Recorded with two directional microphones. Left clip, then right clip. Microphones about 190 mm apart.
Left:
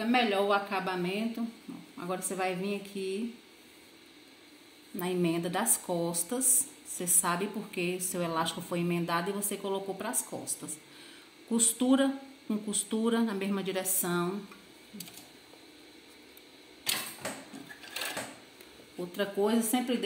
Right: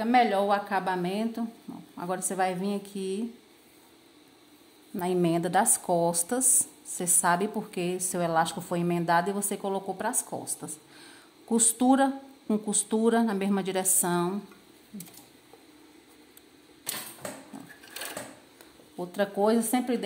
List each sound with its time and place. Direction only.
0.0 s a woman's voice: 55° right (ahead or behind)
4.9 s a woman's voice: 55° right (ahead or behind)
11.5 s speech: 55° right (ahead or behind)
19.1 s speech: 50° right (ahead or behind)